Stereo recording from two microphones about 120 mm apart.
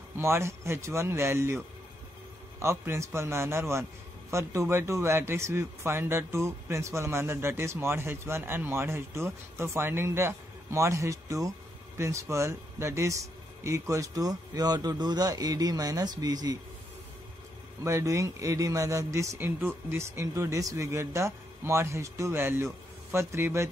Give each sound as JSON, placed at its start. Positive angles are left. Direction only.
{"t": 0.2, "sound": "speech", "side_deg": -20}
{"t": 2.6, "sound": "speech", "side_deg": -20}
{"t": 17.8, "sound": "speech", "side_deg": -25}